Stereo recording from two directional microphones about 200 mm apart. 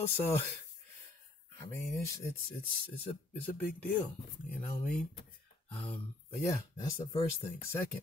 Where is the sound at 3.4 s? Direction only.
10° left (ahead or behind).